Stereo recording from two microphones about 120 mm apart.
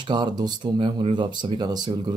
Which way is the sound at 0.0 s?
35° right (ahead or behind).